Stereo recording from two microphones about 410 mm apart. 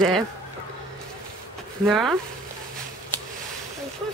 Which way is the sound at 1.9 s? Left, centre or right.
Centre.